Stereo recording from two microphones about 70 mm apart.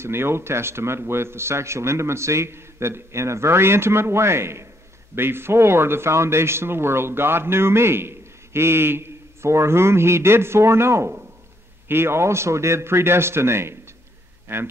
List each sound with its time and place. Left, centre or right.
0.0 s speech: right